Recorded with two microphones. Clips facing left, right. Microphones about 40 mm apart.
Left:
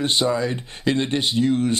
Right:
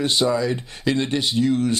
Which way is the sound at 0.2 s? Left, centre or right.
Left.